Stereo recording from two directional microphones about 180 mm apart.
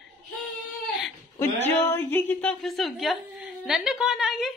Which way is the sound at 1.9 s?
10° left (ahead or behind).